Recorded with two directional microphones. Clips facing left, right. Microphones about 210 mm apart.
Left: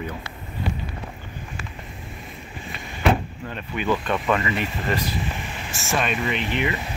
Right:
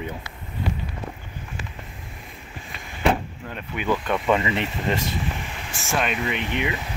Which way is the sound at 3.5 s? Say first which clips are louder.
Left 1 dB; 10° right (ahead or behind).